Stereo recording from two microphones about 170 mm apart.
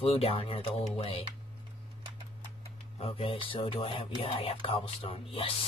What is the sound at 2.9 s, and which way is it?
Speech, 35° left (ahead or behind).